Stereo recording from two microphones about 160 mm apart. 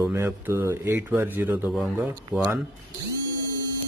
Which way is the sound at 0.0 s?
15° right (ahead or behind).